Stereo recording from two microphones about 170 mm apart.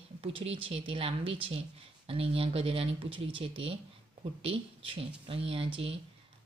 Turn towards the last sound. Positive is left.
turn(degrees=-30)  # may be behind; listen again after turning